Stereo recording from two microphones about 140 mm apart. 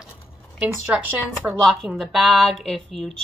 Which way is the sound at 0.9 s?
10° right (ahead or behind).